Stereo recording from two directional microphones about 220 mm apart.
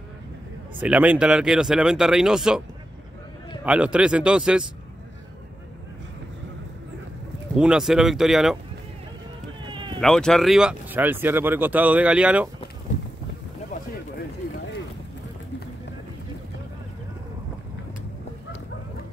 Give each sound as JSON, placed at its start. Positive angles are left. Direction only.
{"t": 0.7, "sound": "speech", "side_deg": -5}
{"t": 3.6, "sound": "speech", "side_deg": -5}
{"t": 7.5, "sound": "speech", "side_deg": -5}
{"t": 9.7, "sound": "a sound", "side_deg": -20}
{"t": 9.9, "sound": "speech", "side_deg": 5}